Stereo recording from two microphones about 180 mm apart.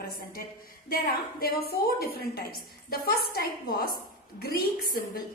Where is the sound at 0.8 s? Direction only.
55° left (ahead or behind).